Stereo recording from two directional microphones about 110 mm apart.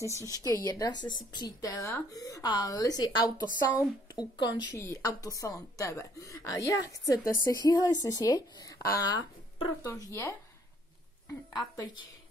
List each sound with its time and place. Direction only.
0.3 s a woman's voice: 30° left (ahead or behind)
4.7 s a woman's voice: 30° left (ahead or behind)
11.5 s a woman's voice: 40° left (ahead or behind)